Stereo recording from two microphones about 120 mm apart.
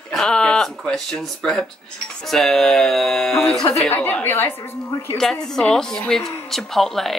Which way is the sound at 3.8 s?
15° left (ahead or behind).